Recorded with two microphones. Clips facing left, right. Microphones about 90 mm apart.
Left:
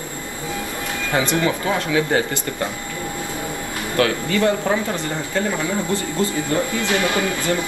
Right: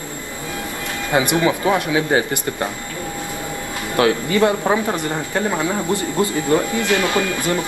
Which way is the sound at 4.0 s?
20° right (ahead or behind).